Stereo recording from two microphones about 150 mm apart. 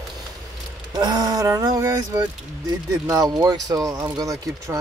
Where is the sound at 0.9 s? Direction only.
30° right (ahead or behind).